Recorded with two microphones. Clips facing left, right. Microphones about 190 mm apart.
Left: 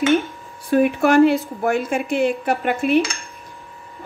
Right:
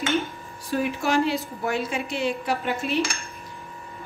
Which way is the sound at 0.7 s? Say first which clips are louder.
Left 9 dB; 60° left (ahead or behind).